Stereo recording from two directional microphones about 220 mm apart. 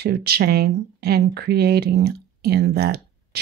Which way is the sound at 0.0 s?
45° right (ahead or behind).